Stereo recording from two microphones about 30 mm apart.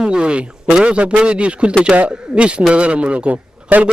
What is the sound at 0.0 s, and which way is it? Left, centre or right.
A man's voice, right.